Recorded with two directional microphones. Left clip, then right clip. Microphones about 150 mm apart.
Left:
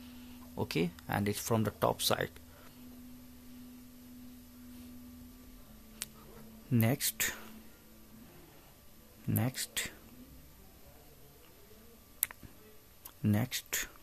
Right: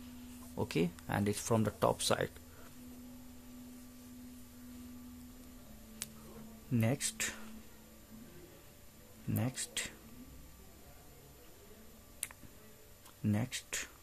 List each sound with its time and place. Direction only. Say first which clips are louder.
0.6 s speech: left 1 dB; 5° left (ahead or behind)
6.0 s a sound: left 2 dB; 10° left (ahead or behind)
6.7 s speech: left 3 dB; 20° left (ahead or behind)
9.3 s speech: left 3 dB; 20° left (ahead or behind)
13.2 s speech: left 3 dB; 20° left (ahead or behind)